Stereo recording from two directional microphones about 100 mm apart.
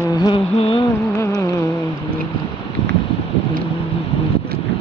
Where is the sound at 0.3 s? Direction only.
70° left (ahead or behind).